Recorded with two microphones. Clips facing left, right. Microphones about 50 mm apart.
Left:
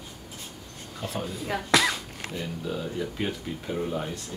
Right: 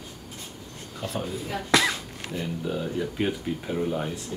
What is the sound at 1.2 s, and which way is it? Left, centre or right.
Speech, centre.